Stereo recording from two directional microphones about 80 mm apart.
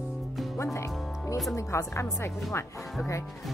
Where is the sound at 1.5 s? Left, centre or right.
Left.